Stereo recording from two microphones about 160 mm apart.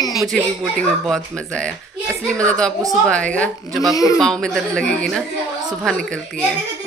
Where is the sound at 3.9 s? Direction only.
20° left (ahead or behind).